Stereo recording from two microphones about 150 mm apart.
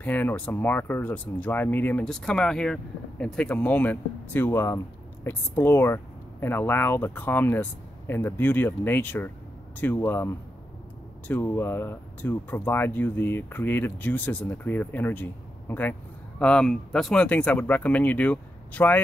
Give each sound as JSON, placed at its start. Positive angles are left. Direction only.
{"t": 0.0, "sound": "speech", "side_deg": 10}